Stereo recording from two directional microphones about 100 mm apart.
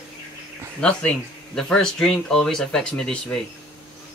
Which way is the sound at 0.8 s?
10° left (ahead or behind).